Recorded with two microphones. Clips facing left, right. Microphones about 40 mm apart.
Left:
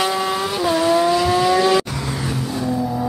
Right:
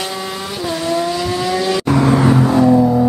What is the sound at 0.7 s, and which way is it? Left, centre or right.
Vehicle, centre.